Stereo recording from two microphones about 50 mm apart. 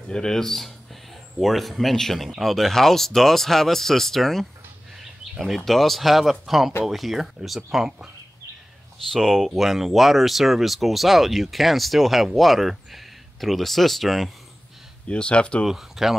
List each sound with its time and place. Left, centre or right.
0.1 s speech: centre
5.7 s speech: centre
8.9 s speech: centre
15.0 s speech: left
15.6 s speech: centre